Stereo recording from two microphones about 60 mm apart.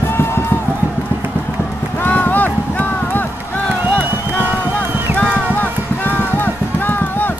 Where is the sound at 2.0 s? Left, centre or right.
Left.